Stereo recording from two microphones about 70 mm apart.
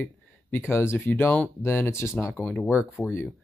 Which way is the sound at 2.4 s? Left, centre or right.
Left.